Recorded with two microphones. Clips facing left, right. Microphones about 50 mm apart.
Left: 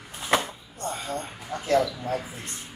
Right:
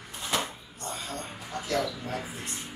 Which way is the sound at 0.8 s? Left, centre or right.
Centre.